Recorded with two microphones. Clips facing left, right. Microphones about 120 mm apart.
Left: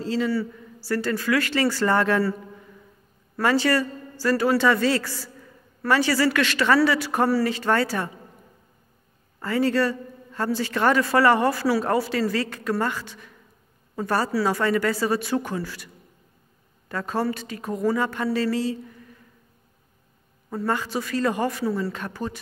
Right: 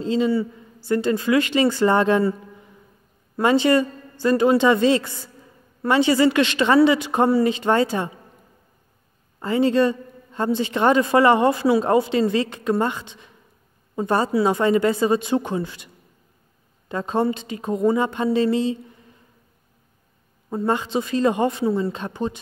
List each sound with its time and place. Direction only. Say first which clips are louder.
0.0 s a woman's voice: right 4 dB; 20° right (ahead or behind)
3.3 s a woman's voice: right 4 dB; 20° right (ahead or behind)
9.4 s a woman's voice: right 4 dB; 20° right (ahead or behind)
16.9 s a woman's voice: right 4 dB; 20° right (ahead or behind)
20.4 s a woman's voice: right 3 dB; 20° right (ahead or behind)